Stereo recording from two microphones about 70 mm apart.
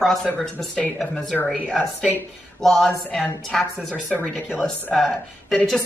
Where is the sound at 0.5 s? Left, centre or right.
Centre.